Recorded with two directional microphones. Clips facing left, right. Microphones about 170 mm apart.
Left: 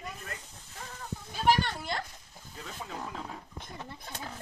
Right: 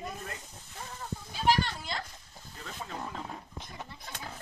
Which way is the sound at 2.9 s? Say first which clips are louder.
Right 1 dB; centre (ahead or behind).